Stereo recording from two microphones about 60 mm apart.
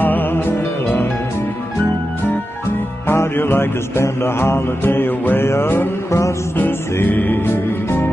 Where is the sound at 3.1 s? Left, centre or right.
Left.